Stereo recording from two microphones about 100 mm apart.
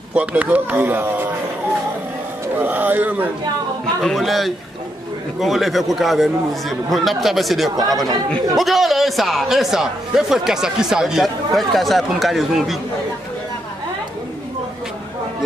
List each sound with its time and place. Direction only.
0.1 s speech: 15° right (ahead or behind)
2.6 s speech: 20° right (ahead or behind)
4.0 s speech: centre (ahead or behind)